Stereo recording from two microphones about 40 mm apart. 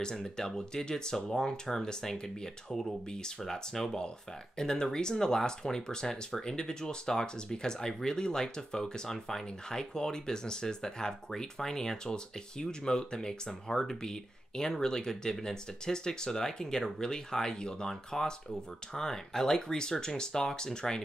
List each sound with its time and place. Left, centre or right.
0.0 s speech: centre